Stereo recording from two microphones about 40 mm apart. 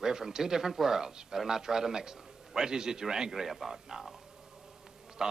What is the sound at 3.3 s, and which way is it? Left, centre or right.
Speech, centre.